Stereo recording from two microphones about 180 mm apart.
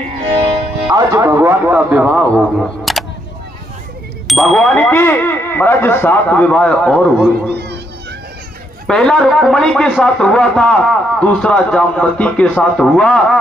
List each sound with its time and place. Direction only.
0.9 s a man's voice: 15° right (ahead or behind)
2.3 s speech: centre (ahead or behind)
4.3 s speech: centre (ahead or behind)
7.5 s music: 65° right (ahead or behind)
8.8 s speech: 5° left (ahead or behind)